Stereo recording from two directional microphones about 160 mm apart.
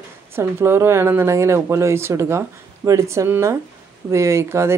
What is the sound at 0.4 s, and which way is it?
Speech, 15° right (ahead or behind).